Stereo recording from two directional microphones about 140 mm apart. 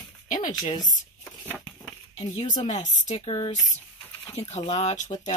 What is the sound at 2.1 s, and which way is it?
Speech, 55° left (ahead or behind).